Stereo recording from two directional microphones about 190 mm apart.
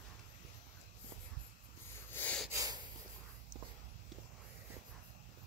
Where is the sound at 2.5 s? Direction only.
20° right (ahead or behind).